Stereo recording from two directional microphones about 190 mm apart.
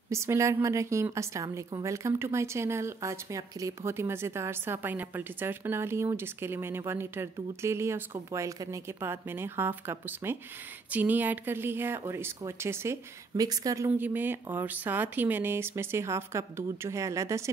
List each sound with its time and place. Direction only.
0.1 s a woman's voice: 15° right (ahead or behind)